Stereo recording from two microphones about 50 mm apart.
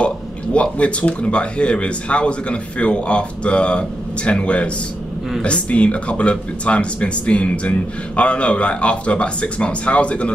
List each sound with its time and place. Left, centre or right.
0.0 s speech: left